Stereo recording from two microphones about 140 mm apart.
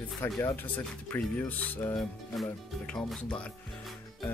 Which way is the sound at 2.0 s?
5° left (ahead or behind).